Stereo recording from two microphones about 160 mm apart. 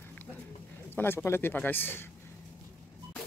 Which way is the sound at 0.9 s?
15° left (ahead or behind).